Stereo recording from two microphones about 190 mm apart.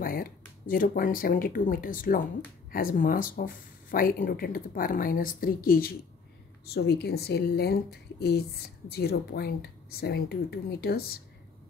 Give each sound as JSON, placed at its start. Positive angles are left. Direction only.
{"t": 0.0, "sound": "speech", "side_deg": 50}